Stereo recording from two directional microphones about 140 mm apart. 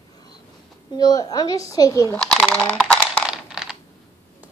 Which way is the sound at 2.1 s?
10° left (ahead or behind).